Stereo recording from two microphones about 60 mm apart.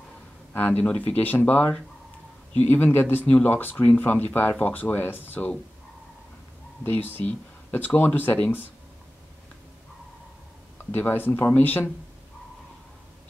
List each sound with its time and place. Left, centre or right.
0.5 s speech: left
6.8 s speech: left
10.9 s speech: left